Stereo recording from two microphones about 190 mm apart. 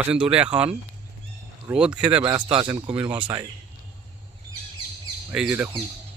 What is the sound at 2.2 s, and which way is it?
Speech, 25° right (ahead or behind).